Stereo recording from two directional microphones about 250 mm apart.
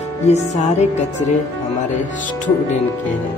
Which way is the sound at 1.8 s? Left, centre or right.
Left.